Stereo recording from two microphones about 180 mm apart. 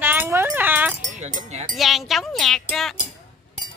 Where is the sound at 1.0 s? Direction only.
40° right (ahead or behind).